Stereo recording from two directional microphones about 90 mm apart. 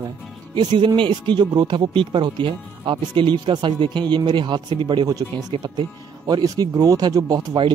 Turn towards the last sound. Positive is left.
turn(degrees=-45)  # may be behind; listen again after turning